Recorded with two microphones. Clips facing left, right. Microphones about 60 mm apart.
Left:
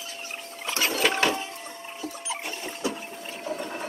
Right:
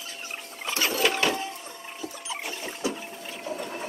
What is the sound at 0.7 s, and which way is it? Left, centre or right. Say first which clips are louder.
Printer: even; left.